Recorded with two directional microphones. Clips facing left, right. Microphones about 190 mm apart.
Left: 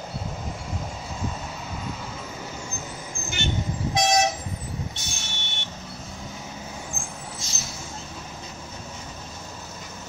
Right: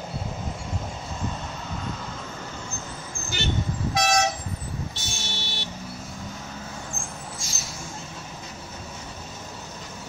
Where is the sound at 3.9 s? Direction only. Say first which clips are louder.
Left 1 dB; 20° left (ahead or behind).